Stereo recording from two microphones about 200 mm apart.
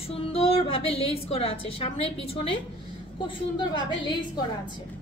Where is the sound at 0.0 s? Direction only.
30° left (ahead or behind).